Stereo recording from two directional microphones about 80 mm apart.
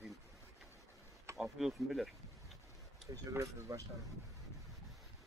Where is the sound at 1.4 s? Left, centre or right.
Centre.